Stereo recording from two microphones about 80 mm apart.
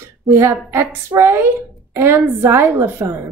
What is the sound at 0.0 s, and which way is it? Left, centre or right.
A woman's voice, right.